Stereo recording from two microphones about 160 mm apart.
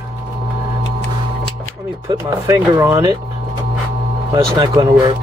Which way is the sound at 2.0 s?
20° right (ahead or behind).